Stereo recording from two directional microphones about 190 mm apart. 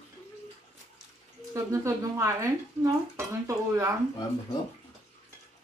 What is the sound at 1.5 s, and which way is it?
Speech, 15° right (ahead or behind).